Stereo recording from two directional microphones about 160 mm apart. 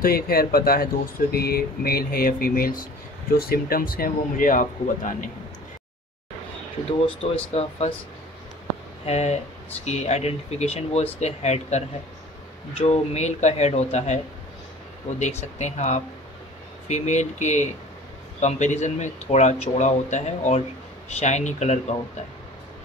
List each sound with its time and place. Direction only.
0.0 s speech: 70° left (ahead or behind)
6.9 s speech: 40° left (ahead or behind)
9.0 s speech: 40° left (ahead or behind)
15.6 s speech: 45° left (ahead or behind)